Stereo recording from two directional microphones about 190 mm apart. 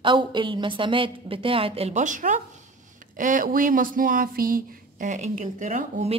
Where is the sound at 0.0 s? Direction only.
25° right (ahead or behind).